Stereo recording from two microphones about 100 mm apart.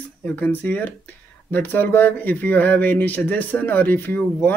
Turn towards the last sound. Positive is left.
turn(degrees=20)  # may be behind; listen again after turning